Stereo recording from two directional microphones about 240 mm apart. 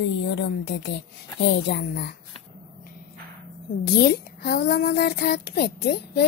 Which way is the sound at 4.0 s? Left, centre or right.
Left.